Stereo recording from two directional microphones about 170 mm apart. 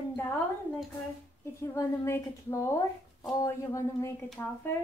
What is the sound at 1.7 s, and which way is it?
A woman's voice, 15° left (ahead or behind).